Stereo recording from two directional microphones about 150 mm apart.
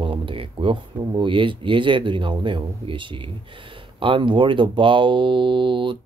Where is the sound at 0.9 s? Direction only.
35° right (ahead or behind).